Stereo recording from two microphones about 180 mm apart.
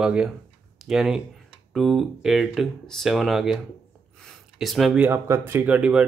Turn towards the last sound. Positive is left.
turn(degrees=-5)  # may be behind; listen again after turning